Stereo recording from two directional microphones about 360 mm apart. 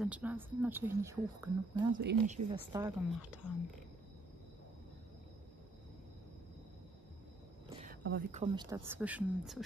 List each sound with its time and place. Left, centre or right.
0.0 s a woman's voice: centre
2.0 s speech: right
2.7 s speech: centre
7.8 s speech: right; by 9.6 s centre